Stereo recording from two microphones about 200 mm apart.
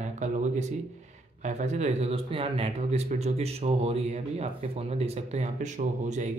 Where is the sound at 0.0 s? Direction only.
35° right (ahead or behind).